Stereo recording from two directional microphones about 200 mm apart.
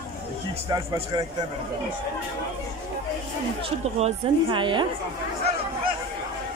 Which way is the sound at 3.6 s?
30° right (ahead or behind).